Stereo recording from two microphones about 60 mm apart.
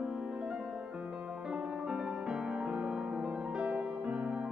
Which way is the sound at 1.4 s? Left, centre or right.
Centre.